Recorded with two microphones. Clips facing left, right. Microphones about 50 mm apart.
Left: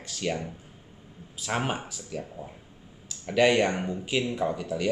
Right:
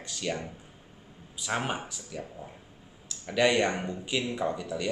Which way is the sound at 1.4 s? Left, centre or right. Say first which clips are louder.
Left 2 dB; centre.